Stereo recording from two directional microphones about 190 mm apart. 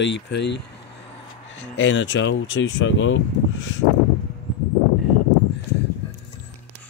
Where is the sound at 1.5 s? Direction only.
80° left.